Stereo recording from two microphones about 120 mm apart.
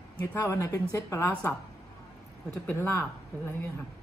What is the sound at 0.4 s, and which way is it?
Speech, 25° left (ahead or behind).